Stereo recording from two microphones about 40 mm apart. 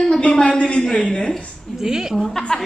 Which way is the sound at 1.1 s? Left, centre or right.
Left.